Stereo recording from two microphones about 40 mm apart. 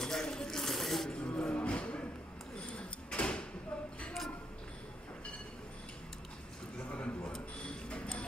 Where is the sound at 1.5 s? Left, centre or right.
Left.